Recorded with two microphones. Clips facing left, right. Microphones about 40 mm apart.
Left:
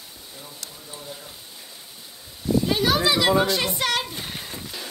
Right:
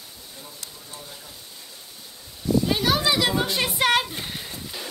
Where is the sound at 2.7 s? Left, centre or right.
Centre.